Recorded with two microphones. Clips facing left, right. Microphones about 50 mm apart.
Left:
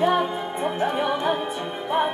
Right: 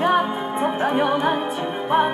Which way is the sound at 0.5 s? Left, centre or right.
Right.